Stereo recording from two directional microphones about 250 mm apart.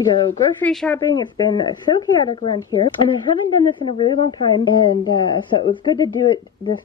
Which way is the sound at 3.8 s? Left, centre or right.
Centre.